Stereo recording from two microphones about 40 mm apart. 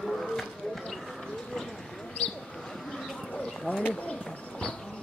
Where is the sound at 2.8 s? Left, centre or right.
Centre.